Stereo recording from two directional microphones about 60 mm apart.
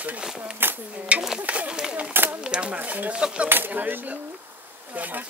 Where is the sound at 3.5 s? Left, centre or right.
Right.